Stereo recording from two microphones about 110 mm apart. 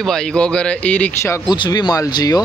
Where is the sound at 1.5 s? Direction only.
45° left (ahead or behind).